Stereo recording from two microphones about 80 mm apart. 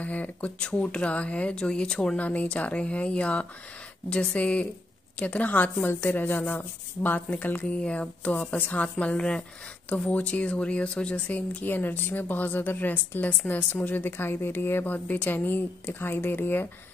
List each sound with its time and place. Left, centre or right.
0.0 s speech: centre